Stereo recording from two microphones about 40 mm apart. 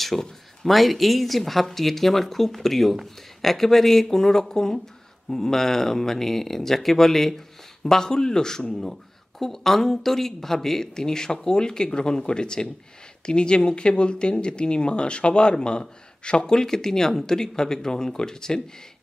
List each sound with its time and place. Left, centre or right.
0.1 s speech: centre